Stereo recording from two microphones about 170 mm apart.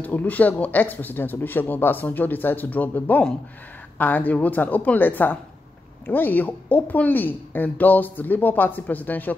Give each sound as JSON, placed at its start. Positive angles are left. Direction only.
{"t": 0.0, "sound": "speech", "side_deg": 10}